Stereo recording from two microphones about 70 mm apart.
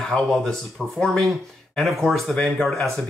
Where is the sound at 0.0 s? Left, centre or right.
Centre.